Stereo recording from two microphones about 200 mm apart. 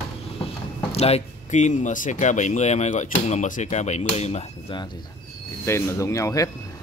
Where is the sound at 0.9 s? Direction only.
30° left (ahead or behind).